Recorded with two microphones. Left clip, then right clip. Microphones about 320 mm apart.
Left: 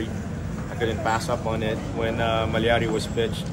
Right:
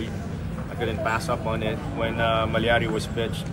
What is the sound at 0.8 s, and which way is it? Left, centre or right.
Speech, centre.